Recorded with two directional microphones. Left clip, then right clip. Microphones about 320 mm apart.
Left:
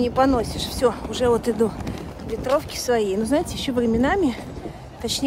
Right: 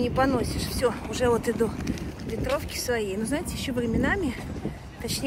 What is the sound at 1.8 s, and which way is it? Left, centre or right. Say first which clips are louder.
Speech: left 1 dB; left.